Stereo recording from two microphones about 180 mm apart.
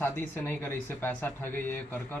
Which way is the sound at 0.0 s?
10° left (ahead or behind).